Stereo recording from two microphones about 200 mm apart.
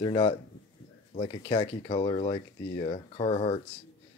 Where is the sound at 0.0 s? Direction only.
25° left (ahead or behind).